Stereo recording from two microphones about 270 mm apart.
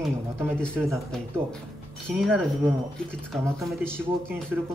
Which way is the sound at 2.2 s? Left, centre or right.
Centre.